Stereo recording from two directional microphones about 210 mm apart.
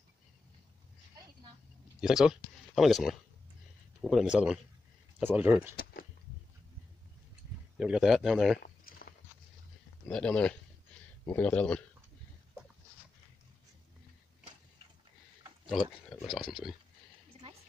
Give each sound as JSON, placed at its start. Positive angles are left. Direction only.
{"t": 2.0, "sound": "a man's voice", "side_deg": -5}
{"t": 7.7, "sound": "a man's voice", "side_deg": -5}
{"t": 8.5, "sound": "a sound", "side_deg": 45}
{"t": 10.0, "sound": "a man's voice", "side_deg": 5}
{"t": 15.7, "sound": "a man's voice", "side_deg": 0}